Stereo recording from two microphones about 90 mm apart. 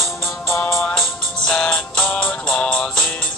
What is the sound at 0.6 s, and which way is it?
Music, 20° left (ahead or behind).